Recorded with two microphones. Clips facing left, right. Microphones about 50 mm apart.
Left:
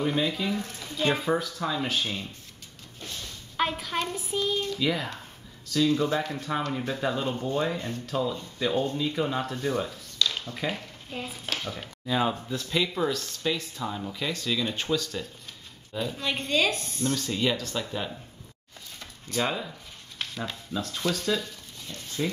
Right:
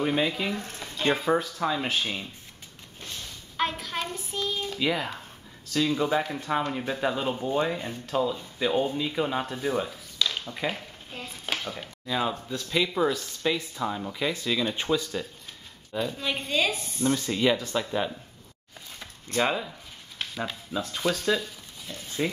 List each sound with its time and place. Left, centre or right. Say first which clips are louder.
0.0 s speech: right 1 dB; centre
0.7 s a sound: right 1 dB; right
1.1 s speech: right 4 dB; centre
1.4 s speech: right 2 dB; centre
3.5 s a woman's voice: left 1 dB; centre
4.1 s child singing: left 3 dB; centre
4.6 s speech: even; centre
11.1 s speech: left 5 dB; centre
11.4 s speech: right 5 dB; centre
12.1 s speech: left 2 dB; centre
16.0 s speech: right 1 dB; centre
19.4 s speech: right 3 dB; centre